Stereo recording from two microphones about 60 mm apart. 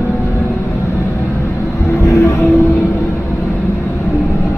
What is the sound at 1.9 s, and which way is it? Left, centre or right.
Vehicle, left.